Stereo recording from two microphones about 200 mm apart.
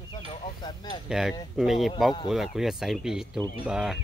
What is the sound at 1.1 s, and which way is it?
Speech, centre (ahead or behind).